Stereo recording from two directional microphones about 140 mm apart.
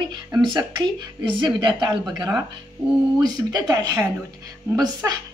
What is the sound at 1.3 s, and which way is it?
A woman's voice, 35° right (ahead or behind).